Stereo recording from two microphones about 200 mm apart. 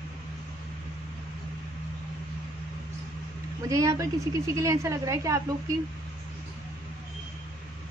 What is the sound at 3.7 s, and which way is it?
A woman's voice, 15° right (ahead or behind).